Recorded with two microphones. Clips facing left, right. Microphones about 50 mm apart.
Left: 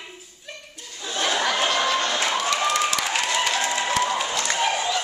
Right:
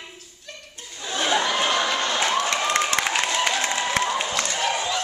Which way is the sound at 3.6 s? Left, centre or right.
Centre.